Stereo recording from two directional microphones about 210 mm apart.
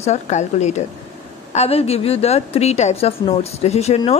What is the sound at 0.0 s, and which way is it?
A woman's voice, 35° left (ahead or behind).